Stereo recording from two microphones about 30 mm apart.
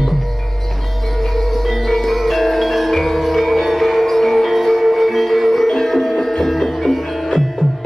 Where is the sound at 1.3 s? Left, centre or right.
Centre.